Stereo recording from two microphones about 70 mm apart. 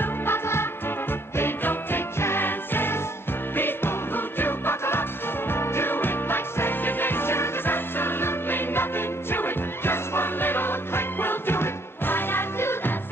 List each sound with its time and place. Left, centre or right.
0.0 s music: left